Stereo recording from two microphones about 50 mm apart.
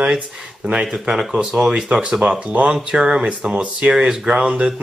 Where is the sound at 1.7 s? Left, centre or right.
Right.